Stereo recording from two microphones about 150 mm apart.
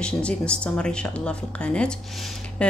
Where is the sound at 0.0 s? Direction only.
5° left (ahead or behind).